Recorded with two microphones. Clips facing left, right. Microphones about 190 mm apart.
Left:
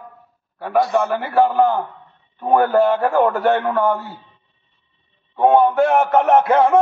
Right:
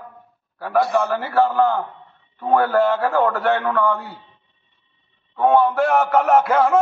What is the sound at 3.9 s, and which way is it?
Speech, centre (ahead or behind).